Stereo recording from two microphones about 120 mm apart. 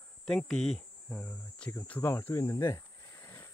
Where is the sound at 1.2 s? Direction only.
15° left (ahead or behind).